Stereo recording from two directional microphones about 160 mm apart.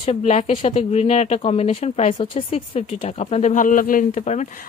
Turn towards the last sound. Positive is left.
turn(degrees=50)  # may be behind; listen again after turning